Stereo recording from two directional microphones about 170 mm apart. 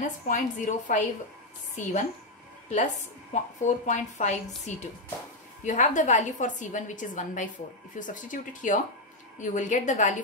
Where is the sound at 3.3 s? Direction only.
45° left (ahead or behind).